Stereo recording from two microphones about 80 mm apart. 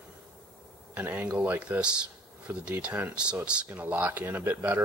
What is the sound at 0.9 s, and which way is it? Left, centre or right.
A man's voice, right.